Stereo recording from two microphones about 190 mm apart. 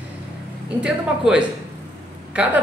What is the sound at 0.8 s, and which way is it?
Speech, 5° right (ahead or behind).